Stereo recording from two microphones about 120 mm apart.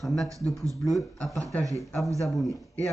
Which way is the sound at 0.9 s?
Centre (ahead or behind).